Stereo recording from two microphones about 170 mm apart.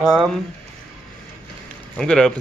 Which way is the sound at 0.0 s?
15° right (ahead or behind).